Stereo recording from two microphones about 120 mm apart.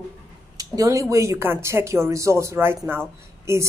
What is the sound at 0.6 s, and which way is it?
Speech, 30° right (ahead or behind).